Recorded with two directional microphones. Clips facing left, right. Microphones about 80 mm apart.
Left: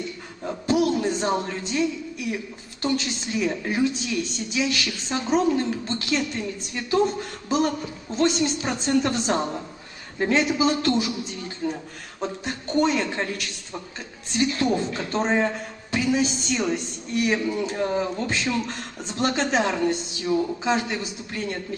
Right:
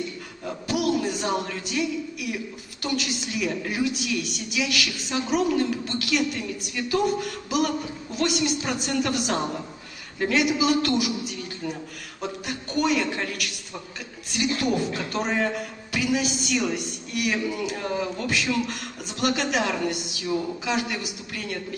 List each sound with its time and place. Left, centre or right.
0.7 s a man's voice: left